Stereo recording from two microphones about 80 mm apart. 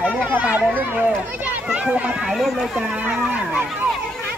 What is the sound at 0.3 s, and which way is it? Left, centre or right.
A child's voice, right.